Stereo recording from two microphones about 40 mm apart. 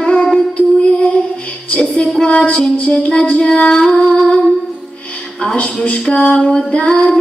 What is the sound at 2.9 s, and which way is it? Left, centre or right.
Music, centre.